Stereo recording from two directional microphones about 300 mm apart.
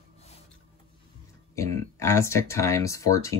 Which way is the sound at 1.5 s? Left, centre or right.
Centre.